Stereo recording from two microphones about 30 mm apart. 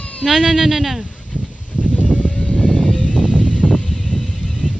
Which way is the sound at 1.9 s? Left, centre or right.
Left.